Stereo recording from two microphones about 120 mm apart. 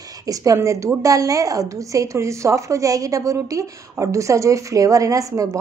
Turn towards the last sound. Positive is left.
turn(degrees=-30)  # may be behind; listen again after turning